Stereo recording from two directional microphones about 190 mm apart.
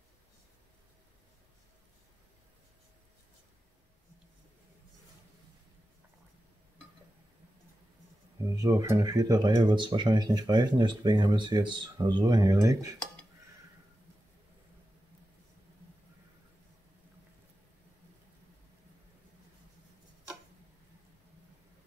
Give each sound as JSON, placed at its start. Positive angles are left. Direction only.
{"t": 8.5, "sound": "speech", "side_deg": -15}